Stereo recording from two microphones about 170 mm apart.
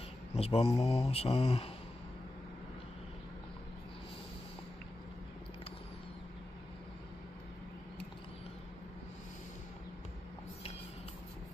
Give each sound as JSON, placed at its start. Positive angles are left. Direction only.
{"t": 0.4, "sound": "speech", "side_deg": 35}